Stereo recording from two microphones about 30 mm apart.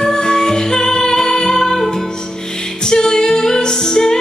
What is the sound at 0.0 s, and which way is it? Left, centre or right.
Music, left.